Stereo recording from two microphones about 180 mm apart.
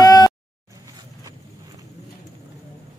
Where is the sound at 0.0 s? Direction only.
20° left (ahead or behind).